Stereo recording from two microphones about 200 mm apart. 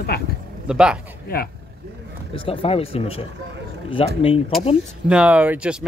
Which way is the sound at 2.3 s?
25° left (ahead or behind).